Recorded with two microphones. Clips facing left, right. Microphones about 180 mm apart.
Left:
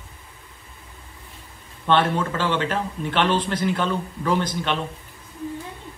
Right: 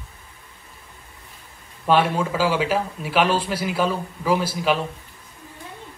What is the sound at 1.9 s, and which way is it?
A man's voice, 10° right (ahead or behind).